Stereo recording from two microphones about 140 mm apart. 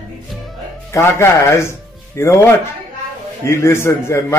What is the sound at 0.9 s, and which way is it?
A man's voice, 20° left (ahead or behind).